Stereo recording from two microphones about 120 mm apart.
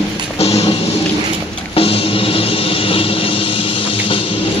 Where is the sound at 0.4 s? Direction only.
55° left (ahead or behind).